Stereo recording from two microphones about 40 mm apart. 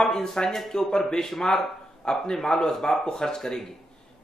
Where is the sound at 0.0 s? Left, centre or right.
Centre.